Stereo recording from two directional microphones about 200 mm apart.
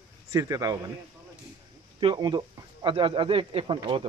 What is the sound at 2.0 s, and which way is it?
Speech, 20° right (ahead or behind).